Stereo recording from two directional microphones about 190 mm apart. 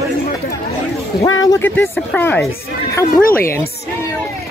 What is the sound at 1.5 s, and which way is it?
Speech, 10° left (ahead or behind).